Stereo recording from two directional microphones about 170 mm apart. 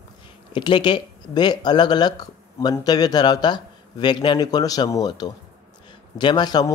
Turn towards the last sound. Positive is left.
turn(degrees=25)  # may be behind; listen again after turning